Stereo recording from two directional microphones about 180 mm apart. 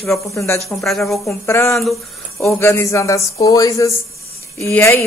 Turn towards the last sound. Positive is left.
turn(degrees=15)  # may be behind; listen again after turning